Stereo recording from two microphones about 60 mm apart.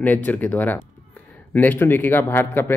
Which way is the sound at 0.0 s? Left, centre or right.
Left.